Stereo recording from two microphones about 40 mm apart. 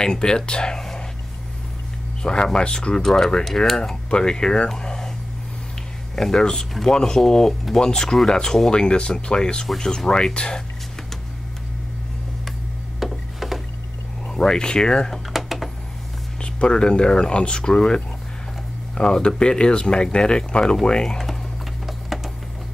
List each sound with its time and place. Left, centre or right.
0.0 s speech: centre
2.2 s speech: left
3.0 s speech: centre
3.9 s speech: centre
4.6 s a sound: centre
6.1 s speech: centre
13.0 s a sound: centre
14.2 s speech: centre
15.3 s computer keyboard: centre
16.3 s speech: left
21.8 s a sound: centre